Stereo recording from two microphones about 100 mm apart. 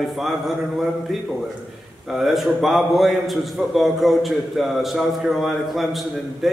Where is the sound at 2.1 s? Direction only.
5° right (ahead or behind).